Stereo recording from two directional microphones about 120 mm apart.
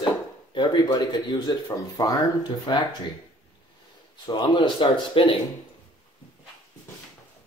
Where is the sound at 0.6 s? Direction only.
35° left (ahead or behind).